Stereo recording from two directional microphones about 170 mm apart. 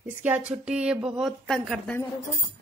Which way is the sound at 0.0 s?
10° right (ahead or behind).